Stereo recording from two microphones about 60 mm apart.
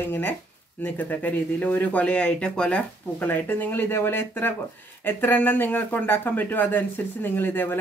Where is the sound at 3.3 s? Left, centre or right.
Left.